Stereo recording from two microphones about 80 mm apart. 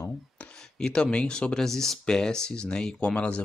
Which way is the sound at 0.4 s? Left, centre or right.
Centre.